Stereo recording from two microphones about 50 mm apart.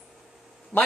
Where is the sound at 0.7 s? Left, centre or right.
Left.